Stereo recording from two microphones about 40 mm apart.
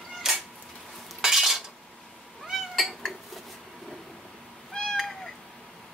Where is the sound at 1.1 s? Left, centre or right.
Centre.